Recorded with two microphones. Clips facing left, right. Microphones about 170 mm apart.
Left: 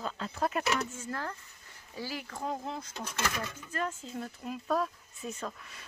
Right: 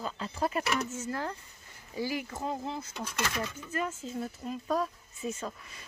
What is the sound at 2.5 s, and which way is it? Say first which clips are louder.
Speech: left 1 dB; centre (ahead or behind).